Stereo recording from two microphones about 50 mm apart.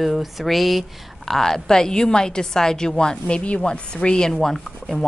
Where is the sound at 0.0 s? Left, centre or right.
Centre.